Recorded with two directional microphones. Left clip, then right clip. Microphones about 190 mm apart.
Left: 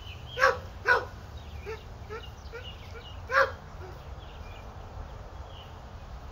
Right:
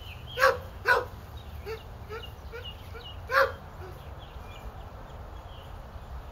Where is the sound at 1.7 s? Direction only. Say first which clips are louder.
Right 1 dB; 60° right (ahead or behind).